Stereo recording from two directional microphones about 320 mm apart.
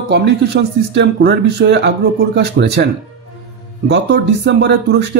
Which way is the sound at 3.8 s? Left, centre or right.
Right.